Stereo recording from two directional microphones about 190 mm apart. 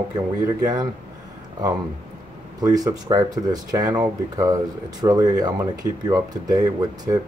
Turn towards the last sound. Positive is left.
turn(degrees=-20)  # may be behind; listen again after turning